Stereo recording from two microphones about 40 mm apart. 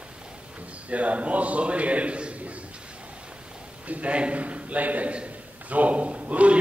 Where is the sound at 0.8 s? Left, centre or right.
Right.